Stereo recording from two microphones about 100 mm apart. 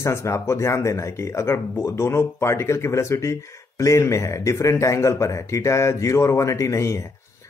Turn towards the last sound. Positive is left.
turn(degrees=30)  # may be behind; listen again after turning